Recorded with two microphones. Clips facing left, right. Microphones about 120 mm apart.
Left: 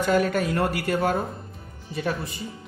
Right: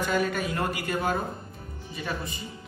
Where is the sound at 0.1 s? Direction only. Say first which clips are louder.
Left 7 dB; 75° left (ahead or behind).